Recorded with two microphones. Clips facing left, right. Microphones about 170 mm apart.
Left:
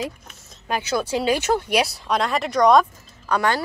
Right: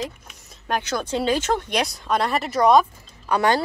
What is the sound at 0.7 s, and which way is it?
Speech, 5° left (ahead or behind).